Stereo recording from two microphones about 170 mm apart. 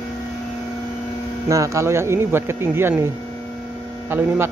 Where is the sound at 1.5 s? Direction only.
20° right (ahead or behind).